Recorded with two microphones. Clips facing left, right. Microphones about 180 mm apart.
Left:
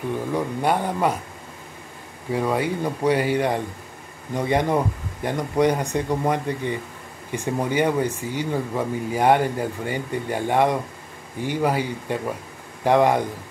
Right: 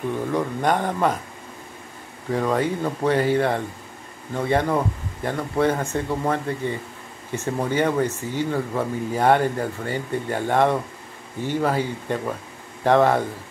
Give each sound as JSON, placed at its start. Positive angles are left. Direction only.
{"t": 0.3, "sound": "speech", "side_deg": 10}
{"t": 2.3, "sound": "speech", "side_deg": 10}